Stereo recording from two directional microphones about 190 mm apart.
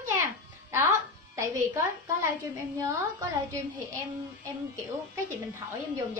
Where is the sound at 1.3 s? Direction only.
15° right (ahead or behind).